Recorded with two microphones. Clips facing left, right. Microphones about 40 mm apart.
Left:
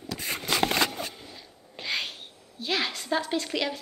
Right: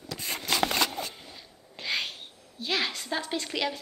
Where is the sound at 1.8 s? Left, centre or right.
Centre.